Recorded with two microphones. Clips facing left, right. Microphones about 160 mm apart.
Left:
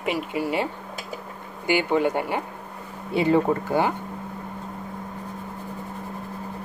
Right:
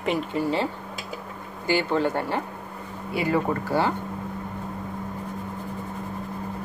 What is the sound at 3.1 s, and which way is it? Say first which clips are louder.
Speech: left 4 dB; 25° left (ahead or behind).